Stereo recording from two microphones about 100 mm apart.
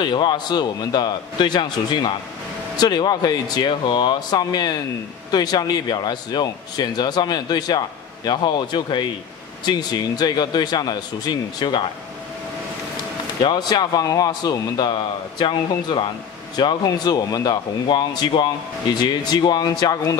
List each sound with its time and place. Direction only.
0.0 s speech: 50° left (ahead or behind)
13.4 s speech: 45° left (ahead or behind)